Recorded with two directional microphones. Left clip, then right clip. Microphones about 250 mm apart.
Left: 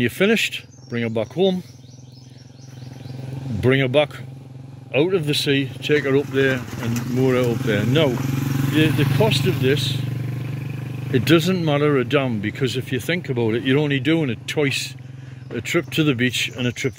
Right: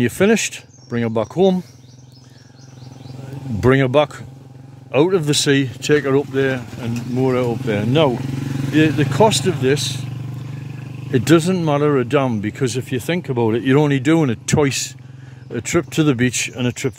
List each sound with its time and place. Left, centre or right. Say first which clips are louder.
0.0 s speech: right 2 dB; right
3.6 s speech: right 3 dB; right
6.0 s speech: right 1 dB; centre
8.2 s vehicle: left 1 dB; centre
8.7 s speech: right 4 dB; right
11.1 s speech: right 2 dB; centre